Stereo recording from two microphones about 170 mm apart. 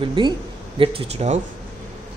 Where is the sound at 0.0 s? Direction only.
30° right (ahead or behind).